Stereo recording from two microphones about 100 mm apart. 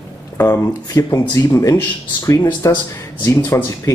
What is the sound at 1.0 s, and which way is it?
Speech, 30° left (ahead or behind).